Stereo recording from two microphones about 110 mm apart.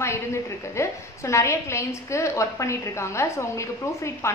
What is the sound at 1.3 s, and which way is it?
A woman's voice, 25° left (ahead or behind).